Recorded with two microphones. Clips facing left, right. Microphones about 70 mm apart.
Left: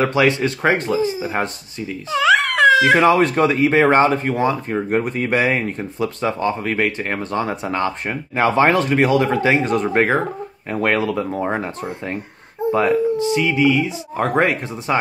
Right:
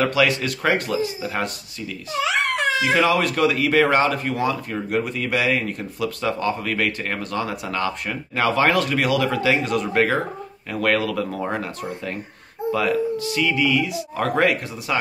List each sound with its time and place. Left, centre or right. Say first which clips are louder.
0.0 s speech: left 3 dB; left
2.6 s a sound: left 10 dB; left
3.0 s speech: left 4 dB; left